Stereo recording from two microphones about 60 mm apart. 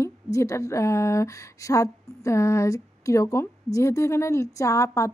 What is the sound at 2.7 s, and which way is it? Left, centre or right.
A woman's voice, left.